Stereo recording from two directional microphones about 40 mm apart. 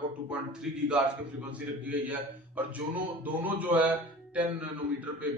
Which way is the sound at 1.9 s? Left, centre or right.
Right.